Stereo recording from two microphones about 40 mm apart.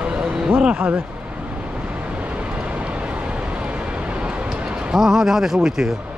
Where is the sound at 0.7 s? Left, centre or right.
Right.